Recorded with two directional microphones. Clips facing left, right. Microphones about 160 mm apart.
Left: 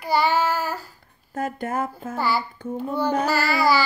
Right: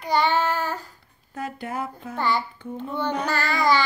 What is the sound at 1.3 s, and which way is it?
Speech, 45° left (ahead or behind).